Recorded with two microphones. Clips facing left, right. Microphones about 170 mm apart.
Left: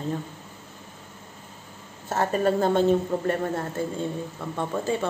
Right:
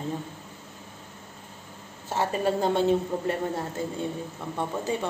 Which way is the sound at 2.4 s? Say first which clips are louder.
Left 3 dB; 15° right (ahead or behind).